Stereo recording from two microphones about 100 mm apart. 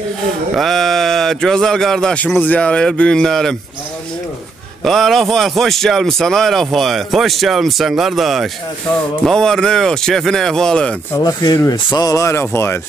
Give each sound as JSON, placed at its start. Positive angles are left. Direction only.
{"t": 0.6, "sound": "a man's voice", "side_deg": 0}
{"t": 4.8, "sound": "a man's voice", "side_deg": 0}
{"t": 11.1, "sound": "speech", "side_deg": 35}
{"t": 11.7, "sound": "a sound", "side_deg": 50}
{"t": 12.1, "sound": "speech", "side_deg": 30}